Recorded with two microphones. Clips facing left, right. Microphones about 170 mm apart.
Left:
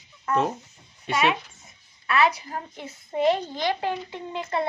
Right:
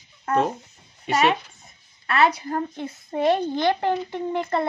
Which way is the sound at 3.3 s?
55° right (ahead or behind).